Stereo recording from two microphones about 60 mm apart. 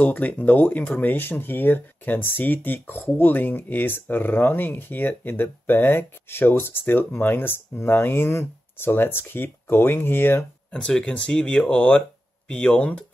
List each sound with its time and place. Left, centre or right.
0.0 s speech: left
10.7 s speech: centre